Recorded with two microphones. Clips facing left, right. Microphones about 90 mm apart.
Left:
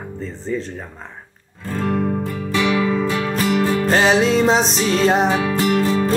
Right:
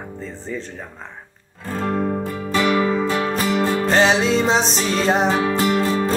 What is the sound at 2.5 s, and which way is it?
Music, 40° right (ahead or behind).